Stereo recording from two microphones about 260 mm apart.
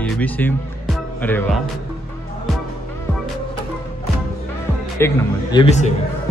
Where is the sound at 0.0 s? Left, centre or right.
Centre.